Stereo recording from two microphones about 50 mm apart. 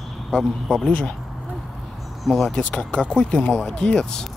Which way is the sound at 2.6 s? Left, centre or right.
Left.